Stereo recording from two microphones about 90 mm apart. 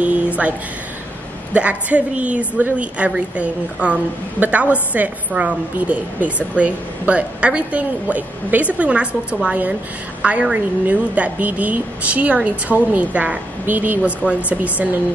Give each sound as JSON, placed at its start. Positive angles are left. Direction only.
{"t": 1.5, "sound": "a woman's voice", "side_deg": -15}